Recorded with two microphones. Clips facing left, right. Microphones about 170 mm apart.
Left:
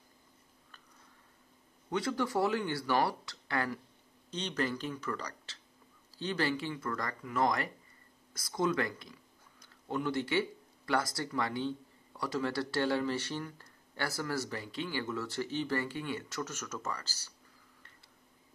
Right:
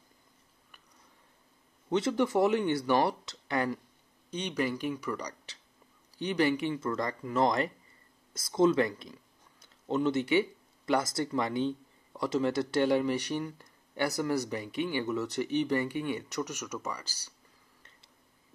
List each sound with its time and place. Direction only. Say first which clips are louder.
1.9 s speech: right 5 dB; 20° right (ahead or behind)